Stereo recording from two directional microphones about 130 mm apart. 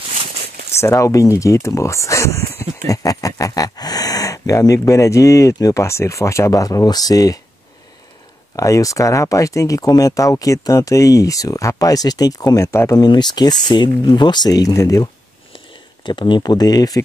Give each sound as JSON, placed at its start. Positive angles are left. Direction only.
{"t": 0.7, "sound": "speech", "side_deg": 20}
{"t": 8.5, "sound": "speech", "side_deg": 25}
{"t": 16.0, "sound": "speech", "side_deg": 35}